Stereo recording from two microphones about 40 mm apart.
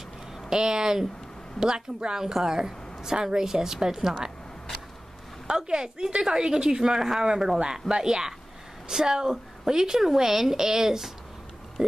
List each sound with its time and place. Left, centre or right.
0.5 s a woman's voice: centre
5.5 s a woman's voice: centre